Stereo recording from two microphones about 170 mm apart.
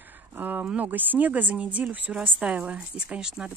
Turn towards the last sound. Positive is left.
turn(degrees=-5)  # may be behind; listen again after turning